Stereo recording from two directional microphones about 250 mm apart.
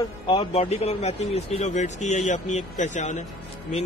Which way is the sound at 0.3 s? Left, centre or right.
Left.